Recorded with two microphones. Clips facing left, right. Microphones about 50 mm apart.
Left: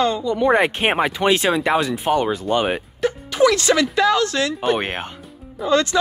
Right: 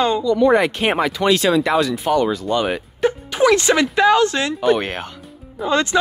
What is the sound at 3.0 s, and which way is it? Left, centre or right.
Speech, right.